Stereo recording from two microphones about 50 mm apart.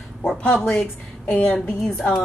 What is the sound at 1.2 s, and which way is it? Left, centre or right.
Speech, left.